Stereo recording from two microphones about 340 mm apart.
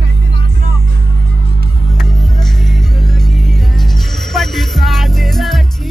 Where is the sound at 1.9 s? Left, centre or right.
Centre.